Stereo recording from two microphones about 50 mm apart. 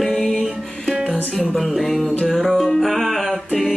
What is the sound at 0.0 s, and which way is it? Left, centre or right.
Music, centre.